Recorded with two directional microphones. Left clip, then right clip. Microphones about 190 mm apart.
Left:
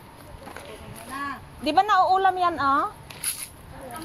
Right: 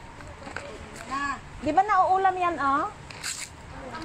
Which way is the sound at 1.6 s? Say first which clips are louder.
Left 2 dB; 15° left (ahead or behind).